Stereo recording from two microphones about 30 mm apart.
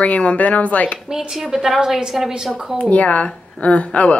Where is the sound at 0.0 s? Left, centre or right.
Left.